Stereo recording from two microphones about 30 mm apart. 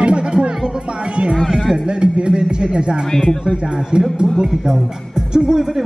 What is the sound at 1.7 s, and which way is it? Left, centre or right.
Speech, right.